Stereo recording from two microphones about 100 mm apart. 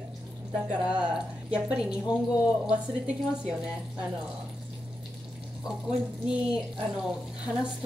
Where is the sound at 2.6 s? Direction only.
10° right (ahead or behind).